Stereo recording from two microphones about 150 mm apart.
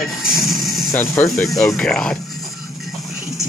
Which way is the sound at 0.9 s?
15° left (ahead or behind).